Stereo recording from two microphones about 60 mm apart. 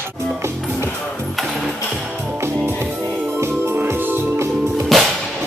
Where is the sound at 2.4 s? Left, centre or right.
Right.